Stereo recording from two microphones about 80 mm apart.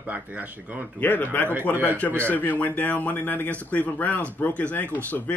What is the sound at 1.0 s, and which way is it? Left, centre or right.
Speech, left.